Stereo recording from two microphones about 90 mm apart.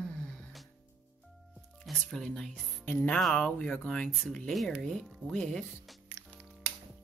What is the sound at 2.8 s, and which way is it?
Speech, 15° left (ahead or behind).